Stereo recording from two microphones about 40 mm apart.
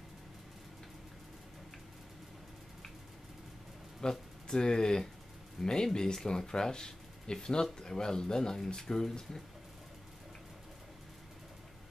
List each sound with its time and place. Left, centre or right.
4.0 s speech: centre